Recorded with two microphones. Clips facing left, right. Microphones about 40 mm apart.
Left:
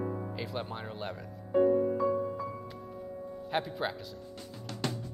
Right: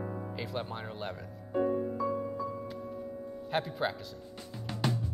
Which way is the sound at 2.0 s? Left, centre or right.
Centre.